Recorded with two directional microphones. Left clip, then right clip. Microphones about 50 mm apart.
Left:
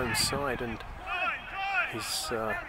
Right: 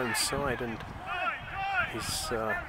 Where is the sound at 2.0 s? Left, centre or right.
Centre.